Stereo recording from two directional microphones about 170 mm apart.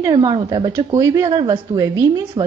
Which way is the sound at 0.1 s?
25° right (ahead or behind).